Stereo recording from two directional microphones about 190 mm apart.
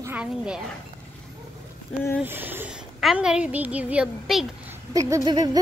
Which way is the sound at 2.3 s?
10° right (ahead or behind).